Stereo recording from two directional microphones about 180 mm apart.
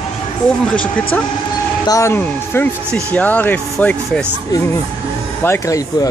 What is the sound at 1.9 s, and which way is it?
Speech, 15° left (ahead or behind).